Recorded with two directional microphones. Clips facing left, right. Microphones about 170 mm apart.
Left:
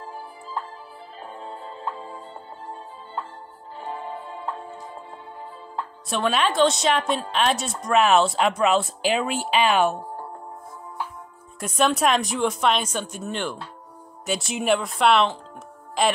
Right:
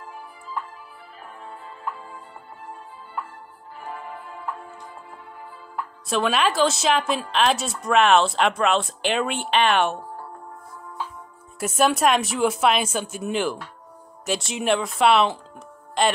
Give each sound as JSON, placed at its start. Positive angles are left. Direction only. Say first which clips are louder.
{"t": 0.0, "sound": "music", "louder": "left 3 dB", "side_deg": 30}
{"t": 3.8, "sound": "music", "louder": "left 3 dB", "side_deg": 25}
{"t": 6.0, "sound": "a woman's voice", "louder": "right 1 dB", "side_deg": 0}
{"t": 11.6, "sound": "a woman's voice", "louder": "right 1 dB", "side_deg": -5}